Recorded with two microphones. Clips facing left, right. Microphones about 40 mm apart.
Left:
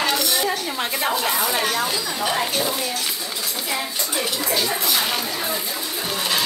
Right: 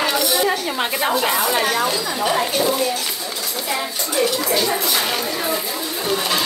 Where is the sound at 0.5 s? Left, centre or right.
Right.